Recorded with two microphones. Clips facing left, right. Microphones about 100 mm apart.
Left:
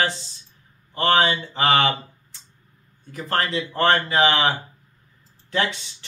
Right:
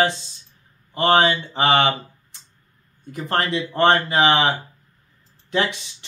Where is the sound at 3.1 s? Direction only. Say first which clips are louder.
Right 2 dB; 25° right (ahead or behind).